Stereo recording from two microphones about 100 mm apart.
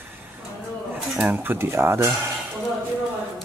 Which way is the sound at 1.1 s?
15° right (ahead or behind).